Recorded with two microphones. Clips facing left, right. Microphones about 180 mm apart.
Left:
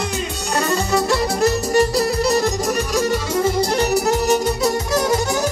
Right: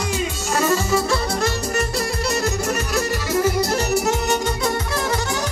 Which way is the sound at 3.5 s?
35° left (ahead or behind).